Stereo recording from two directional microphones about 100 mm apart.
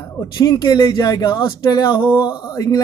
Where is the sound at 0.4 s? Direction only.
40° left (ahead or behind).